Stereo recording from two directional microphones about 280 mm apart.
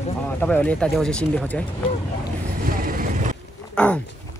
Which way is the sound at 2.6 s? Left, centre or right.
Right.